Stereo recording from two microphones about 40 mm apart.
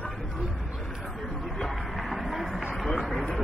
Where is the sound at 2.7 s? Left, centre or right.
Centre.